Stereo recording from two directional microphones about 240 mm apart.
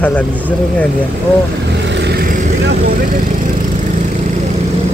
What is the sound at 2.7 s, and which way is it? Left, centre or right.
Speech, right.